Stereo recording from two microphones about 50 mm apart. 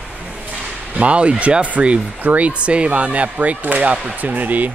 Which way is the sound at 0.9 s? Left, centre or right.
Right.